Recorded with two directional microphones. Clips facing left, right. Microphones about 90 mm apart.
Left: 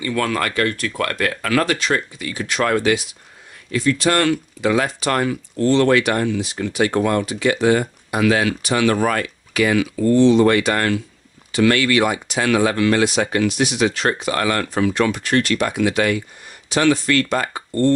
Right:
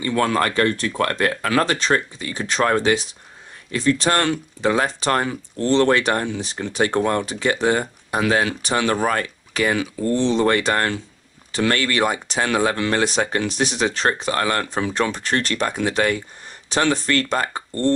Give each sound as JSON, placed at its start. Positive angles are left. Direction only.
{"t": 0.0, "sound": "speech", "side_deg": -30}